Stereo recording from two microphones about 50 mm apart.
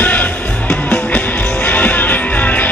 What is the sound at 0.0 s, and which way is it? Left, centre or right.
Music, left.